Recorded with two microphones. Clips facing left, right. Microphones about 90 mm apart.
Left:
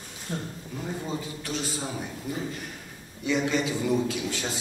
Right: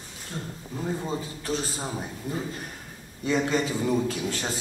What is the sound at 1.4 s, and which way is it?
Speech, 35° right (ahead or behind).